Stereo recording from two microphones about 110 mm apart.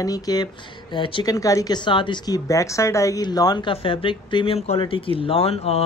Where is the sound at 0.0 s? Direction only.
35° left (ahead or behind).